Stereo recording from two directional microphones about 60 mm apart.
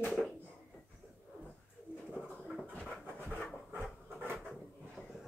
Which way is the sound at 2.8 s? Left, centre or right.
Centre.